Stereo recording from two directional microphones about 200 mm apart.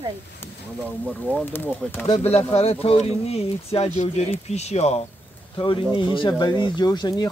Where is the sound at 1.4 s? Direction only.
10° left (ahead or behind).